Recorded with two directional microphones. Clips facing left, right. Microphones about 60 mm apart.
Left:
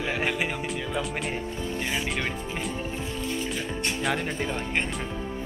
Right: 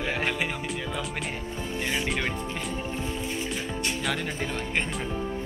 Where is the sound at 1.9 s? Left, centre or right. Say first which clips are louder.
Right 3 dB; centre.